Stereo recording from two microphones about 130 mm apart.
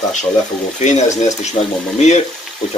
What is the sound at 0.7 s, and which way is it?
Speech, 65° left (ahead or behind).